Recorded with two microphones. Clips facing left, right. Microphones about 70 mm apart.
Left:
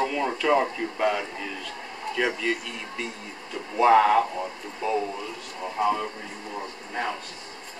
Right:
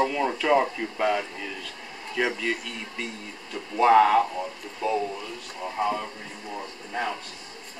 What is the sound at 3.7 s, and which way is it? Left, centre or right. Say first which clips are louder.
Speech: even; centre.